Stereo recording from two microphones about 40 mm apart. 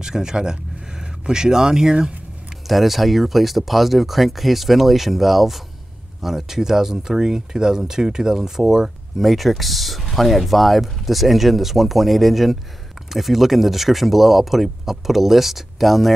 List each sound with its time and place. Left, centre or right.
0.0 s speech: centre
2.6 s speech: centre
9.2 s speech: centre